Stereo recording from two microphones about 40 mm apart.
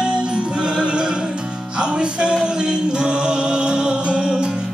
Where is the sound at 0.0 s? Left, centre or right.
Right.